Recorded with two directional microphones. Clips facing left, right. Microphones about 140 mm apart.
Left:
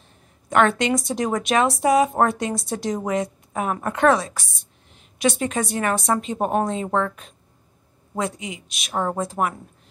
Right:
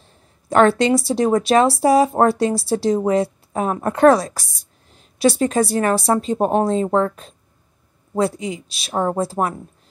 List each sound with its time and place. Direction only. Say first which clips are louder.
0.5 s a woman's voice: right 5 dB; 35° right (ahead or behind)